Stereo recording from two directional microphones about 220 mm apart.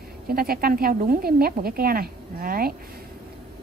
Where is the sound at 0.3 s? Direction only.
45° right (ahead or behind).